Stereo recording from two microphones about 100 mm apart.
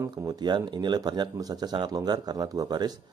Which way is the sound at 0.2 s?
45° right (ahead or behind).